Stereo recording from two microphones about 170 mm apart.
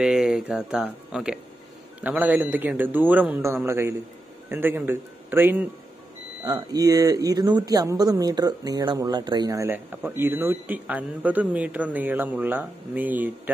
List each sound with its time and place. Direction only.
0.0 s speech: 5° right (ahead or behind)